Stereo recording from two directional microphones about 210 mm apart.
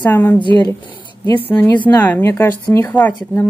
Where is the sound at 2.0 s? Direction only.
10° left (ahead or behind).